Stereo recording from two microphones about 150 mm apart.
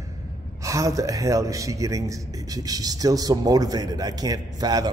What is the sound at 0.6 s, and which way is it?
A man's voice, 20° right (ahead or behind).